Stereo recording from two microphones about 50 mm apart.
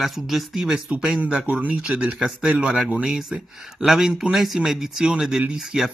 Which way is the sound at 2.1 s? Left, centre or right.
Centre.